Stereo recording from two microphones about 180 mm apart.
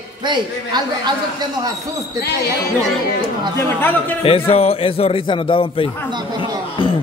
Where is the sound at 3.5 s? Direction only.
10° left (ahead or behind).